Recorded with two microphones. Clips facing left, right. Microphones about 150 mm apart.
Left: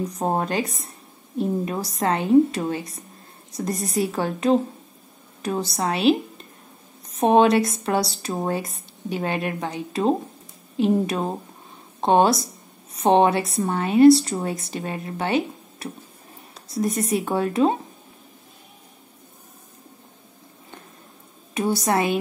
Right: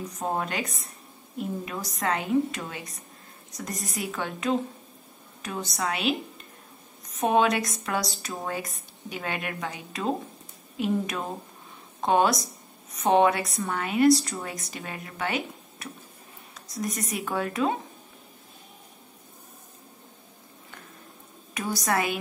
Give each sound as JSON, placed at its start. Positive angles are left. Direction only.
{"t": 0.2, "sound": "a woman's voice", "side_deg": 35}
{"t": 21.5, "sound": "a woman's voice", "side_deg": 25}